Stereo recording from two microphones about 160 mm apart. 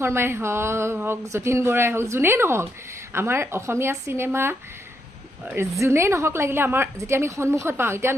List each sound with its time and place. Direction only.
0.0 s speech: 15° right (ahead or behind)